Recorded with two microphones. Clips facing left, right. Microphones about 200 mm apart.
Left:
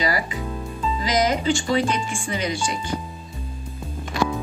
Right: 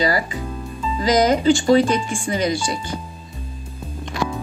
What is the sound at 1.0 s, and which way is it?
Speech, 35° right (ahead or behind).